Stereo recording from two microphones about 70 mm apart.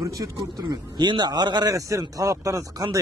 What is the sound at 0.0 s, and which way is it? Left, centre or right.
Speech, right.